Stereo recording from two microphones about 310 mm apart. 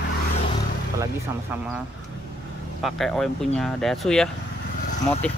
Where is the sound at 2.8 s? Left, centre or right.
Centre.